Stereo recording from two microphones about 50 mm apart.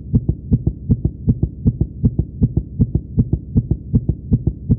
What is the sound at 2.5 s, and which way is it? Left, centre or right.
Heart sounds, centre.